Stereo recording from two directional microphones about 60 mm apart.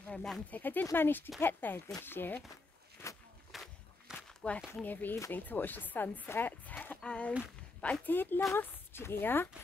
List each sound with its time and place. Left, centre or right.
0.1 s speech: centre
0.5 s speech: left
3.0 s walk: left
3.5 s walk: centre
4.8 s speech: left
6.6 s a sound: left
7.0 s speech: centre
8.1 s speech: left